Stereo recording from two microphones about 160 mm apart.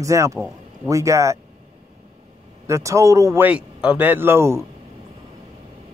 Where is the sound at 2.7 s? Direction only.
20° right (ahead or behind).